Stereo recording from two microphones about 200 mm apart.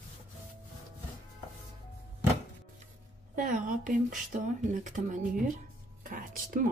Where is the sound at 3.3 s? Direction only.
40° right (ahead or behind).